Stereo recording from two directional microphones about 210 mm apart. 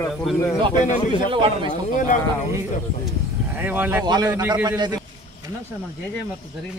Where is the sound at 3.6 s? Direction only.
10° right (ahead or behind).